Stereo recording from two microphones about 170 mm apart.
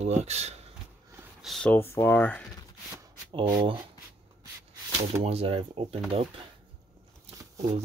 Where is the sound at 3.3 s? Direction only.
30° right (ahead or behind).